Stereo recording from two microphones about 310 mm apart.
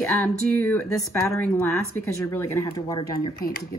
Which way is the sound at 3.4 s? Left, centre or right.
Left.